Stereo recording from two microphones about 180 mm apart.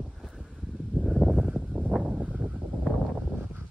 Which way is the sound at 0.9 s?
Centre (ahead or behind).